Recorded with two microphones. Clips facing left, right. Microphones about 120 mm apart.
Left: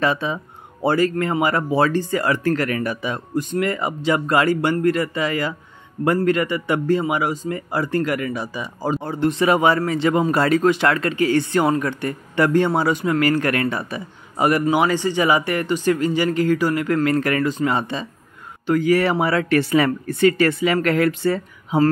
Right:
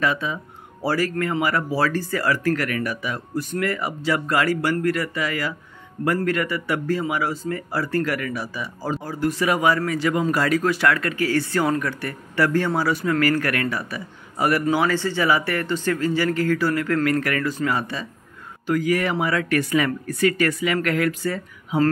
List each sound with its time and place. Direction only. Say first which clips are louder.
0.0 s speech: left 3 dB; 30° left (ahead or behind)